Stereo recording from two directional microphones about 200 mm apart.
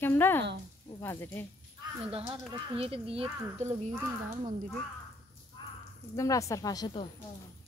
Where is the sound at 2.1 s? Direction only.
25° right (ahead or behind).